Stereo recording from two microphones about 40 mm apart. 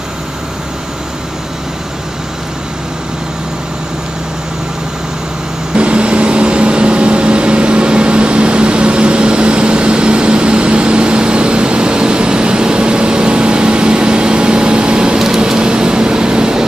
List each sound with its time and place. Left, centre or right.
5.8 s vehicle: right